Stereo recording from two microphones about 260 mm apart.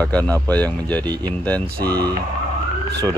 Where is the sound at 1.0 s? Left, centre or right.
Centre.